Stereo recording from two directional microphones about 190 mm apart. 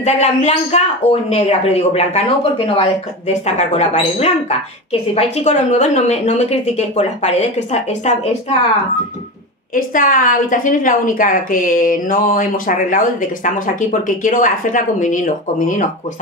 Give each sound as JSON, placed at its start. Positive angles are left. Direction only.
{"t": 0.0, "sound": "a woman's voice", "side_deg": 35}
{"t": 9.8, "sound": "a woman's voice", "side_deg": 45}